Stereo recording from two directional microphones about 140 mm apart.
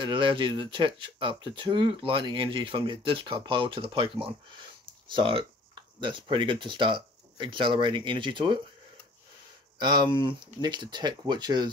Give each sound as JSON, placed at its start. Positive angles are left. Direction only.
{"t": 0.0, "sound": "speech", "side_deg": -35}
{"t": 9.8, "sound": "speech", "side_deg": -30}